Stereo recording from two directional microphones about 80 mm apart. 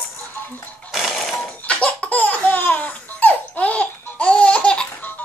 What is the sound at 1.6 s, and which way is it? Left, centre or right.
Laughter, centre.